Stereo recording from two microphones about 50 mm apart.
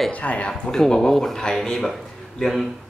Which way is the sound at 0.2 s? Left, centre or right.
Left.